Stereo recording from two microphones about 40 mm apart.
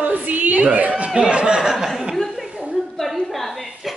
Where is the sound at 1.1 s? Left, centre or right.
Centre.